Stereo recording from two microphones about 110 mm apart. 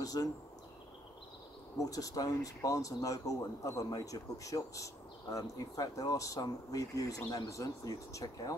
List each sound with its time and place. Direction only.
0.0 s speech: 35° left (ahead or behind)
1.8 s speech: 30° left (ahead or behind)